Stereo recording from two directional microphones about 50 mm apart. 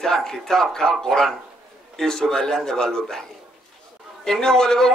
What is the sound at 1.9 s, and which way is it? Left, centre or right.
A man's voice, centre.